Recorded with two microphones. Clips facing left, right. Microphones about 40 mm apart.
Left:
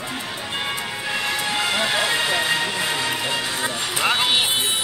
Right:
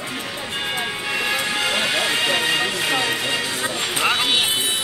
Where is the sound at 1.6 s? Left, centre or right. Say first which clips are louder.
Left 1 dB; right.